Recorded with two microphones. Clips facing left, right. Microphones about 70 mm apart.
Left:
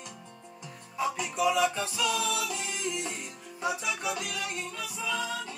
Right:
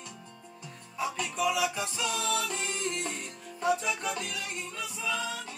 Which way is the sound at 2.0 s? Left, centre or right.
Right.